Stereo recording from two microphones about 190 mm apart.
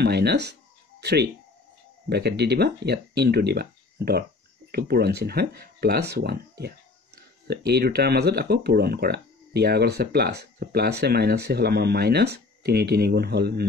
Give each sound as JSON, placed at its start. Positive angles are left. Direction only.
{"t": 0.0, "sound": "speech", "side_deg": -60}